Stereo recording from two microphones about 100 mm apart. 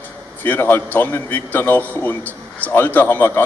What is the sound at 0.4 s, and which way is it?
A man's voice, 20° left (ahead or behind).